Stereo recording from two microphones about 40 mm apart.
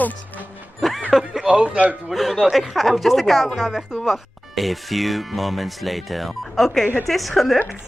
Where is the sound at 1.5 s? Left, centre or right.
Right.